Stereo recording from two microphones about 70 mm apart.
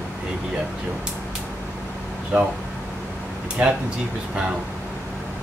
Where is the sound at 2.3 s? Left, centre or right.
Centre.